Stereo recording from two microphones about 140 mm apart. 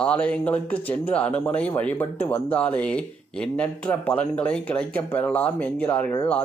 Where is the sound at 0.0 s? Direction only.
10° left (ahead or behind).